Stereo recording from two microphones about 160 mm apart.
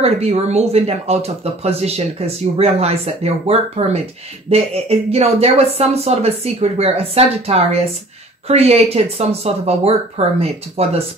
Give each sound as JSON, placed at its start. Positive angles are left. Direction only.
{"t": 0.0, "sound": "speech", "side_deg": -40}